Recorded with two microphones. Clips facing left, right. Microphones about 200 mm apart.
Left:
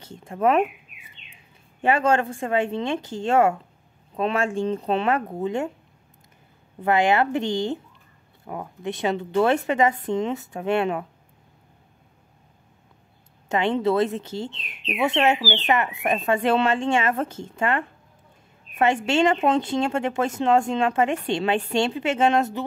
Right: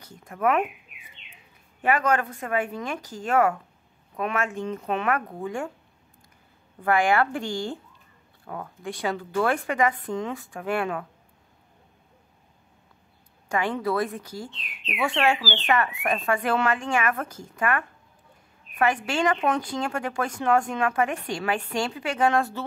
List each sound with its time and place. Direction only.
0.0 s speech: 25° left (ahead or behind)
1.8 s speech: 25° left (ahead or behind)
6.8 s speech: 20° left (ahead or behind)
13.5 s speech: 25° left (ahead or behind)